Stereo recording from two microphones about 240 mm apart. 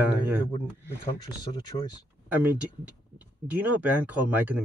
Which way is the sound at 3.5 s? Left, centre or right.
Centre.